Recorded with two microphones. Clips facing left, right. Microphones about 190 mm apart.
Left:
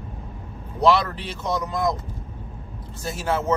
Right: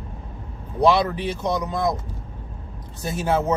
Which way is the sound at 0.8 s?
15° right (ahead or behind).